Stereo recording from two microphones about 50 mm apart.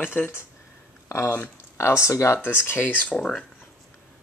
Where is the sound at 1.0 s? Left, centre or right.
Left.